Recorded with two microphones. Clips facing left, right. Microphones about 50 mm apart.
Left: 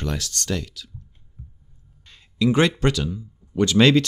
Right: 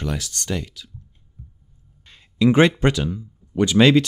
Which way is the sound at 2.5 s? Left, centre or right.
Centre.